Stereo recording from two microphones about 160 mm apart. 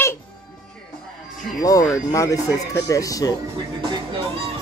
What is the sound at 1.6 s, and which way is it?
Speech, 20° left (ahead or behind).